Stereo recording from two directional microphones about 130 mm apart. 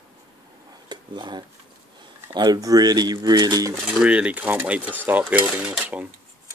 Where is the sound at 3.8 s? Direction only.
10° right (ahead or behind).